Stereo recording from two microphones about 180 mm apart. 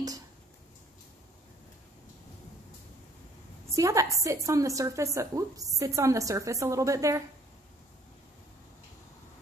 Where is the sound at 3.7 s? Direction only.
15° right (ahead or behind).